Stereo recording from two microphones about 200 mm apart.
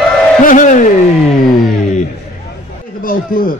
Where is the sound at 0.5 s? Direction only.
40° left (ahead or behind).